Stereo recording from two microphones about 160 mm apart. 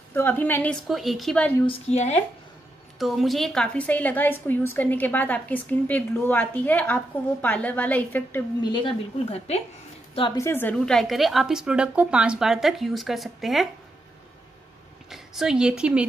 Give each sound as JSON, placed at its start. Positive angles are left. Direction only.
{"t": 0.1, "sound": "a woman's voice", "side_deg": 10}
{"t": 1.7, "sound": "speech", "side_deg": 45}
{"t": 3.0, "sound": "a woman's voice", "side_deg": 0}
{"t": 8.6, "sound": "speech", "side_deg": 30}
{"t": 10.3, "sound": "a woman's voice", "side_deg": 15}
{"t": 15.0, "sound": "a woman's voice", "side_deg": 0}